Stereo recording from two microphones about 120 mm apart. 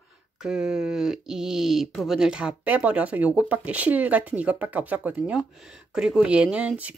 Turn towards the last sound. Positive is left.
turn(degrees=-10)  # may be behind; listen again after turning